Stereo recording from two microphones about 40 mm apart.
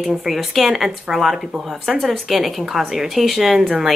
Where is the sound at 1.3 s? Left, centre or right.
Centre.